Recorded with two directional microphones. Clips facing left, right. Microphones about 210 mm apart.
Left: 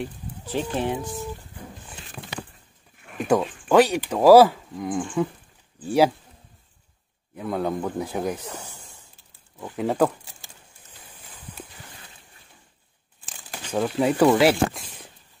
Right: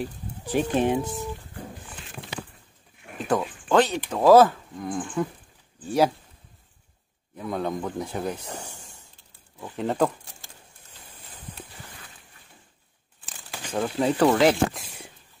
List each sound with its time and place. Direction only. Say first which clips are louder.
0.5 s speech: right 3 dB; 15° right (ahead or behind)
3.3 s speech: left 3 dB; 10° left (ahead or behind)
7.3 s speech: left 2 dB; 5° left (ahead or behind)
9.6 s speech: left 2 dB; 5° left (ahead or behind)
13.2 s speech: even; 5° left (ahead or behind)